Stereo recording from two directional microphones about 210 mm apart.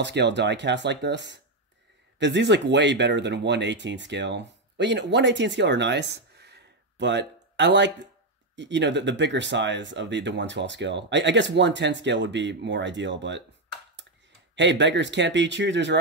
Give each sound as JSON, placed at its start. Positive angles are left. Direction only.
{"t": 0.0, "sound": "speech", "side_deg": -55}
{"t": 14.5, "sound": "speech", "side_deg": -55}